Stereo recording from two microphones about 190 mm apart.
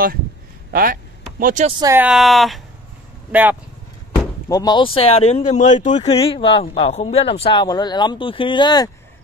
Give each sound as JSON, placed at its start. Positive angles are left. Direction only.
{"t": 1.4, "sound": "speech", "side_deg": -40}
{"t": 1.8, "sound": "speech", "side_deg": -15}
{"t": 2.0, "sound": "speech", "side_deg": 0}
{"t": 4.5, "sound": "speech", "side_deg": 20}